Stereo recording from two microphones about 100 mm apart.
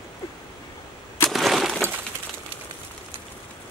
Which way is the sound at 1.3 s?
Centre (ahead or behind).